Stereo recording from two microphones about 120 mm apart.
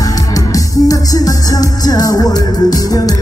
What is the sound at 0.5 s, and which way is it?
Music, 30° left (ahead or behind).